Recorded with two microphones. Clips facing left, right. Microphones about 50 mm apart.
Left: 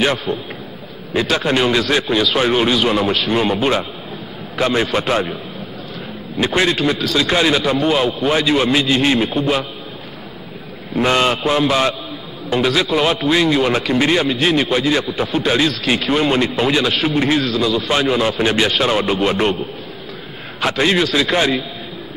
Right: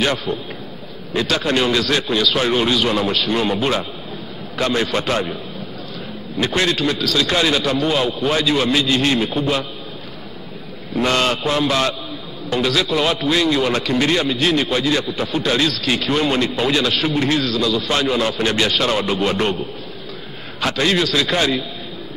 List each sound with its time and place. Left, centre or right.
1.1 s a man's voice: centre
4.6 s a man's voice: centre
6.4 s a man's voice: centre
8.3 s a man's voice: centre
11.1 s a man's voice: centre
20.6 s a man's voice: centre